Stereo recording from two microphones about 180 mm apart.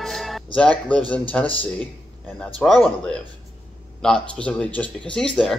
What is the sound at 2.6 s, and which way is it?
Speech, 5° left (ahead or behind).